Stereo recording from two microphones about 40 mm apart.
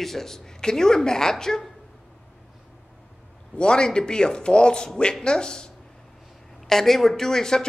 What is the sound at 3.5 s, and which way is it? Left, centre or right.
A man's voice, left.